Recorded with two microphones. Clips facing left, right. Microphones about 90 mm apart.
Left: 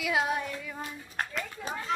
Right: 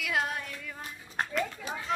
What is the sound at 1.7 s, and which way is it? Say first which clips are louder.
Speech: left 1 dB; 40° left (ahead or behind).